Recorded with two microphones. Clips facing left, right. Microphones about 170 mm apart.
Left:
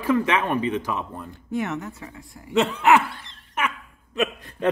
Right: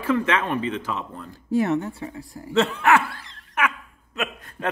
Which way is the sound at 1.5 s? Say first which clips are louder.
Right 6 dB; 35° right (ahead or behind).